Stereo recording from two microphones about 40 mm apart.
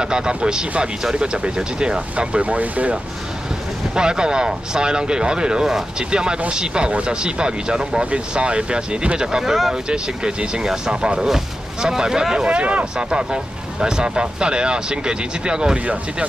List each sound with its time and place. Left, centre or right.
0.0 s speech: right
3.9 s speech: centre
9.4 s speech: centre
9.8 s speech: right
12.4 s speech: right
12.9 s speech: centre